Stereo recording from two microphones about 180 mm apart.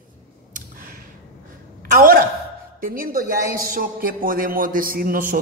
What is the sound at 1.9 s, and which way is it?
A man's voice, 50° right (ahead or behind).